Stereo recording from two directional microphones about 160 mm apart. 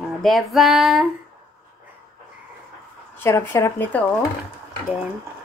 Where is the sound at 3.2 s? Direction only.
15° left (ahead or behind).